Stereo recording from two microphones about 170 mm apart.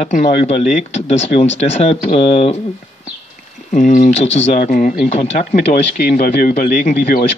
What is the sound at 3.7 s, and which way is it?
Speech, 45° left (ahead or behind).